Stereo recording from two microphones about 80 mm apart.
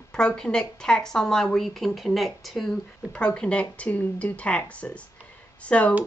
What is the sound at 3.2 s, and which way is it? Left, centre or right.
Speech, centre.